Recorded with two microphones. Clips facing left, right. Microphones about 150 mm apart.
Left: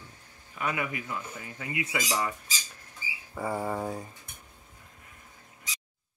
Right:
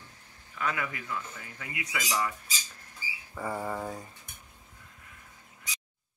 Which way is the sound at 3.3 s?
10° left (ahead or behind).